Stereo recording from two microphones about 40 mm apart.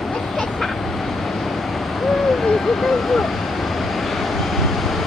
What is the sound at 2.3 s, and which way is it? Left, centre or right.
Vehicle, centre.